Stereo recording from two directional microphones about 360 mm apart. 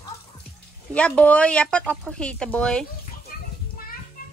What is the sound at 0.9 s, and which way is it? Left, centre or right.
A woman's voice, centre.